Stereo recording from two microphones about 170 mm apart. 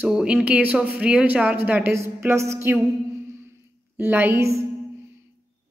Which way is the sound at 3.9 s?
10° right (ahead or behind).